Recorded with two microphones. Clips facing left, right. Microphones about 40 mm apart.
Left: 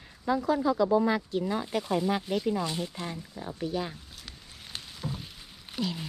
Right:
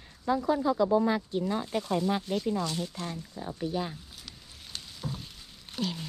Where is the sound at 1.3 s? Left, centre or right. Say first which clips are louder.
Left 1 dB; left.